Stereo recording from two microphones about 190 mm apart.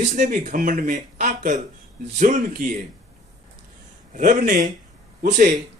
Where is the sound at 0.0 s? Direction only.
40° right (ahead or behind).